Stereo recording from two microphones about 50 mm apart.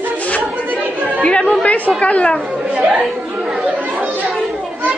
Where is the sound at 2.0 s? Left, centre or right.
Left.